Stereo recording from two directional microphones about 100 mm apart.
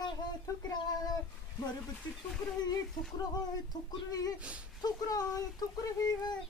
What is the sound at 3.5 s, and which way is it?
Speech, 40° left (ahead or behind).